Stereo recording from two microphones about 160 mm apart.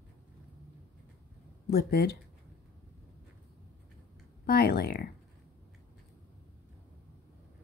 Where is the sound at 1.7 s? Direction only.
75° left (ahead or behind).